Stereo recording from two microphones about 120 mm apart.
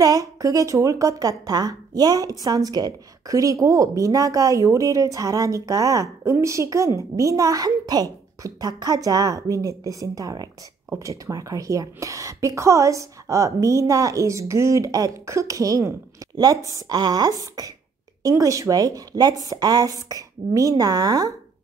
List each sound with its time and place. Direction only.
0.0 s a woman's voice: 30° right (ahead or behind)